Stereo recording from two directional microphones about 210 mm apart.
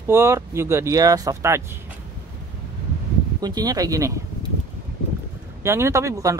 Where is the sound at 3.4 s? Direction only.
20° right (ahead or behind).